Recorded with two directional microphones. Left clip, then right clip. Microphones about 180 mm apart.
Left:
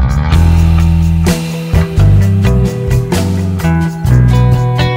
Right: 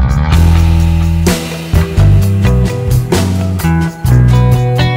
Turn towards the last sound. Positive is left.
turn(degrees=0)  # may be behind; listen again after turning